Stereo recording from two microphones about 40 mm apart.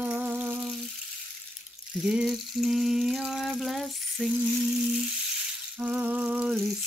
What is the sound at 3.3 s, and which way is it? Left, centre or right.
Water, centre.